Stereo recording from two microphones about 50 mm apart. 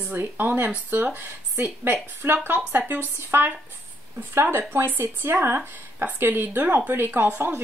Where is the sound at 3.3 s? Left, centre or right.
Right.